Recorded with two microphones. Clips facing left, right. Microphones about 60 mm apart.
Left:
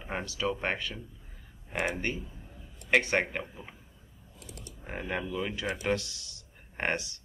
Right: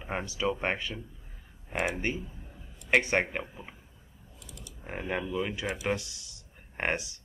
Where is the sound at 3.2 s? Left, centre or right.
Centre.